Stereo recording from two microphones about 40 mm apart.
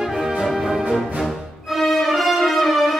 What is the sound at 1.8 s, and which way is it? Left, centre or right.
Music, centre.